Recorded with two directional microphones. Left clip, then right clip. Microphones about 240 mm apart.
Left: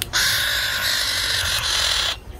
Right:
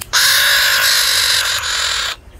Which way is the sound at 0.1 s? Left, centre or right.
Right.